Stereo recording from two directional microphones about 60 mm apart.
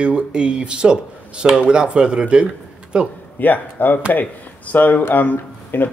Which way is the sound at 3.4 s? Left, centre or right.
Left.